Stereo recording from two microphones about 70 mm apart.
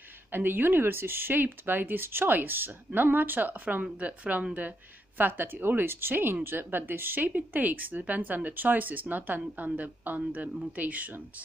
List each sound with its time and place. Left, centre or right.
0.3 s speech: right